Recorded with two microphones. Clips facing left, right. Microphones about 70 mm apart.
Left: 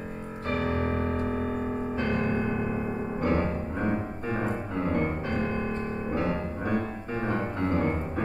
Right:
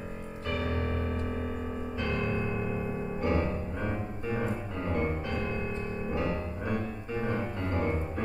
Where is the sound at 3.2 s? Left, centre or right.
Left.